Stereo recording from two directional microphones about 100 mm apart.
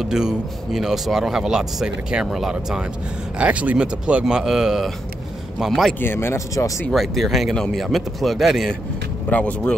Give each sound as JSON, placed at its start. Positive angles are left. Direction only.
{"t": 0.0, "sound": "speech", "side_deg": -5}
{"t": 5.9, "sound": "speech", "side_deg": 25}
{"t": 6.9, "sound": "speech", "side_deg": 0}
{"t": 9.3, "sound": "speech", "side_deg": 15}